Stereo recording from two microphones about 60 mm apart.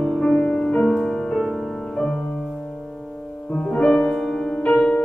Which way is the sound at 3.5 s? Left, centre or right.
Centre.